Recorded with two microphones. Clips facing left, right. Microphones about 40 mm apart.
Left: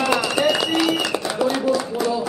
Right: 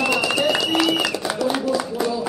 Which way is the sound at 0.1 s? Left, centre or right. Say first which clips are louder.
Left 1 dB; left.